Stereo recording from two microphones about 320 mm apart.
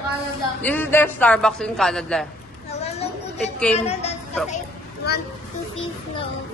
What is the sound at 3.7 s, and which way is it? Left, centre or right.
Speech, centre.